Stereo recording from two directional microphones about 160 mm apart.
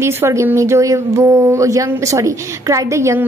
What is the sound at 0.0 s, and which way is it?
A woman's voice, 15° right (ahead or behind).